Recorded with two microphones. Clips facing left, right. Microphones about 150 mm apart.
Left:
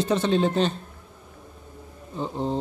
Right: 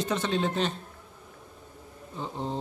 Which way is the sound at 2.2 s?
35° left (ahead or behind).